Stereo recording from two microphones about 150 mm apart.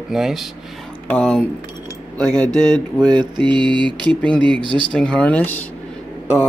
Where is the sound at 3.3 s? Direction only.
30° right (ahead or behind).